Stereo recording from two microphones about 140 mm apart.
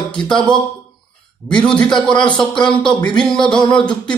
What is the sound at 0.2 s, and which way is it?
A man's voice, 5° left (ahead or behind).